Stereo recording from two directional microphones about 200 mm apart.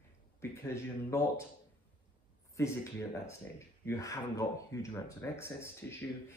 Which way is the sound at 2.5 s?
15° left (ahead or behind).